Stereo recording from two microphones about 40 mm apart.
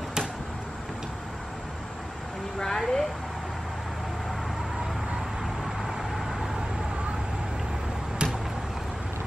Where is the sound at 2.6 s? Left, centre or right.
Centre.